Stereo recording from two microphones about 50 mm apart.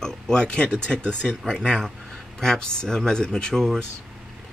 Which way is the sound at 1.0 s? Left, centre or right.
Right.